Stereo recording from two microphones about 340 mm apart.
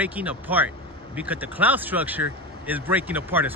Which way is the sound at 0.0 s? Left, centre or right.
Centre.